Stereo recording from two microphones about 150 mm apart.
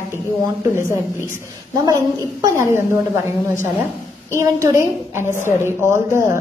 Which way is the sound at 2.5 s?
15° right (ahead or behind).